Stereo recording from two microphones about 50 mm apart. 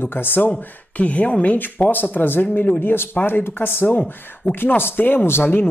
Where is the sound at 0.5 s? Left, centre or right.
Left.